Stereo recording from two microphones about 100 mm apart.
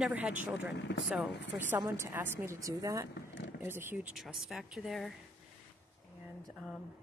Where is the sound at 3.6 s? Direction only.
20° right (ahead or behind).